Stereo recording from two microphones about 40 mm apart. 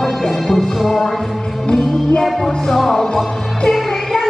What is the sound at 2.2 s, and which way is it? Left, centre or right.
Music, centre.